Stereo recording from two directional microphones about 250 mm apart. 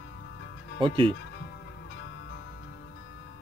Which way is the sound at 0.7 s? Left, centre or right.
Centre.